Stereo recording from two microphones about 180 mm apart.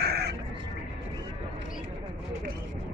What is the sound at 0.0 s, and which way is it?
Crow, 65° right (ahead or behind).